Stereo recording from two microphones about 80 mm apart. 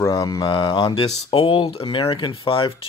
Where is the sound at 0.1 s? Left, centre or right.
Left.